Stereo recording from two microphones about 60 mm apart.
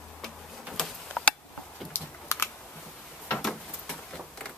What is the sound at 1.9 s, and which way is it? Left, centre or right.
Typing, left.